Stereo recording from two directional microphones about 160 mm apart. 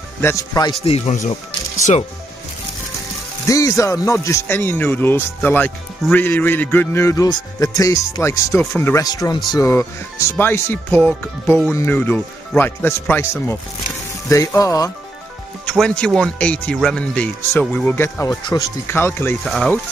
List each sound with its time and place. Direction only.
0.2 s speech: 20° left (ahead or behind)
0.8 s speech: 40° left (ahead or behind)
3.4 s speech: 20° left (ahead or behind)
14.3 s speech: 20° left (ahead or behind)
15.6 s speech: 5° left (ahead or behind)
19.4 s speech: centre (ahead or behind)